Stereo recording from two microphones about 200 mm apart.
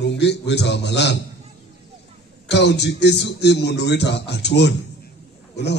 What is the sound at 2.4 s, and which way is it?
Speech, 60° left (ahead or behind).